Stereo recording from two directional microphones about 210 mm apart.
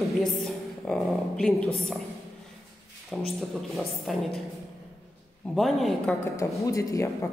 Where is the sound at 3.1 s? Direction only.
Centre (ahead or behind).